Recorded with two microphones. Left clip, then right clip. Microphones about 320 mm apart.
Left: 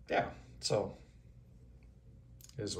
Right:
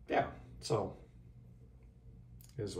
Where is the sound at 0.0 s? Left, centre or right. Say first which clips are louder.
Even; centre.